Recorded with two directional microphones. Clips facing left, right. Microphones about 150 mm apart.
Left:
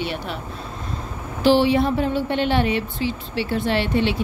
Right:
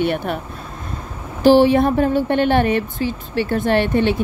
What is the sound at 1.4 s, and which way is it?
A woman's voice, 45° right (ahead or behind).